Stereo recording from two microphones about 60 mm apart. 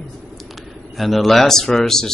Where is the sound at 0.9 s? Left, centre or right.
Centre.